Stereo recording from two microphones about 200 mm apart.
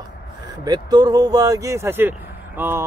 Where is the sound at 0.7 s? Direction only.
20° right (ahead or behind).